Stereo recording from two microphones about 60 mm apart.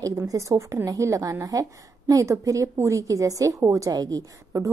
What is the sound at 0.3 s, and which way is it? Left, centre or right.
A woman's voice, right.